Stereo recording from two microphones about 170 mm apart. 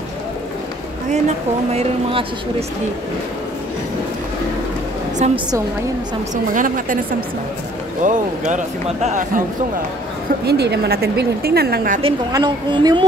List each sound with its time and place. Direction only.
1.1 s speech: 40° right (ahead or behind)
5.2 s speech: 40° right (ahead or behind)
6.3 s speech: 50° right (ahead or behind)
10.4 s a woman's voice: 75° right (ahead or behind)
12.3 s a woman's voice: 25° right (ahead or behind)